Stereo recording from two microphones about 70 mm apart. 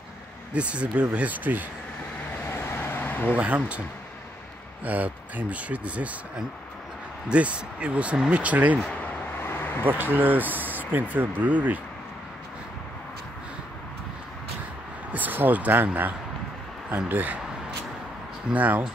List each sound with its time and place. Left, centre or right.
0.5 s speech: centre
2.4 s vehicle: left
3.3 s speech: centre
4.8 s speech: right
7.2 s speech: centre
9.4 s vehicle: left
9.8 s speech: right
15.1 s speech: right
18.5 s speech: right